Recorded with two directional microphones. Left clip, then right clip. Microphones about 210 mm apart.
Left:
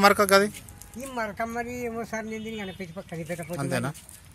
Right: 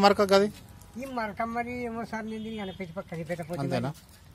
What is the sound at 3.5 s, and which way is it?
Speech, 5° right (ahead or behind).